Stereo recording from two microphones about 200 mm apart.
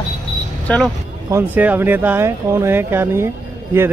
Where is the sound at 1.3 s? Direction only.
10° right (ahead or behind).